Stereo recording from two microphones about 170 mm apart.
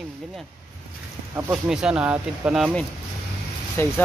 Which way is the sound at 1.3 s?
5° right (ahead or behind).